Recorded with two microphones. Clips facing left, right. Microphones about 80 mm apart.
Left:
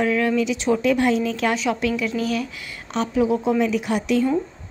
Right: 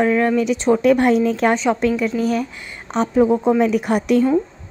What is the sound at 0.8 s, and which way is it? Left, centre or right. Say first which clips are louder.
A woman's voice: right 6 dB; right.